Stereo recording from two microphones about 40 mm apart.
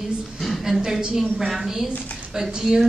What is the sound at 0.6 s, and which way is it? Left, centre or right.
A man's voice, centre.